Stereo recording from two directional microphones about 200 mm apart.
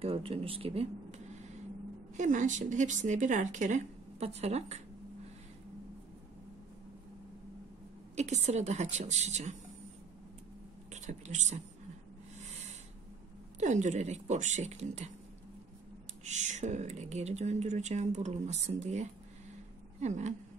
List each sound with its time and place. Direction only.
0.0 s speech: 30° right (ahead or behind)
8.2 s speech: 35° right (ahead or behind)
10.9 s speech: 35° right (ahead or behind)
13.6 s speech: 35° right (ahead or behind)
16.3 s speech: 35° right (ahead or behind)